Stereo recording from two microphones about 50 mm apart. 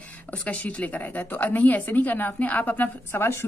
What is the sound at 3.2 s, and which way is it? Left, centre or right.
Speech, left.